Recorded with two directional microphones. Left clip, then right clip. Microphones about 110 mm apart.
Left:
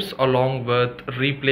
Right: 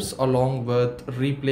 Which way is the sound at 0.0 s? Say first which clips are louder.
Left 3 dB; 35° right (ahead or behind).